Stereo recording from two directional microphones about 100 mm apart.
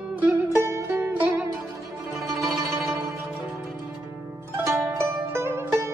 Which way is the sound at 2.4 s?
Centre (ahead or behind).